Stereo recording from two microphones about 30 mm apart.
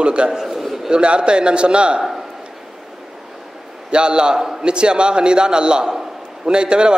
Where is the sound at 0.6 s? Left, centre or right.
Centre.